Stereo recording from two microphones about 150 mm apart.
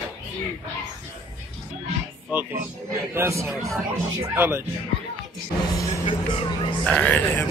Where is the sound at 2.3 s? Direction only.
10° right (ahead or behind).